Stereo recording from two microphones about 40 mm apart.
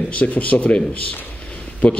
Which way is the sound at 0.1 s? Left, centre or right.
Left.